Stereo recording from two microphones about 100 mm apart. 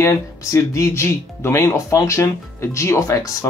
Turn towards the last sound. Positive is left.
turn(degrees=30)  # may be behind; listen again after turning